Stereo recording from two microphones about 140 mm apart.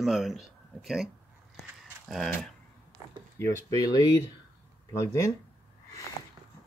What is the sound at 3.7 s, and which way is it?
Speech, 25° left (ahead or behind).